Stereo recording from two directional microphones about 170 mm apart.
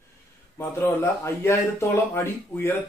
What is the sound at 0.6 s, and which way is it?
Speech, 15° left (ahead or behind).